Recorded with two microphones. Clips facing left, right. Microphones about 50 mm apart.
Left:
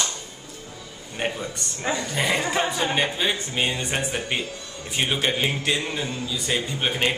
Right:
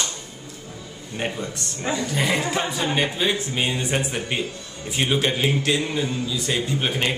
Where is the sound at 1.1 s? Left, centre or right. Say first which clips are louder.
Even; centre.